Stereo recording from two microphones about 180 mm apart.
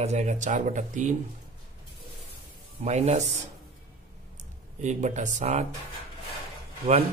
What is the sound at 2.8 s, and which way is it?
Speech, 40° right (ahead or behind).